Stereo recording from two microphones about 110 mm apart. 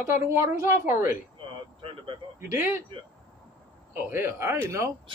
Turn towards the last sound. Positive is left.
turn(degrees=-25)  # may be behind; listen again after turning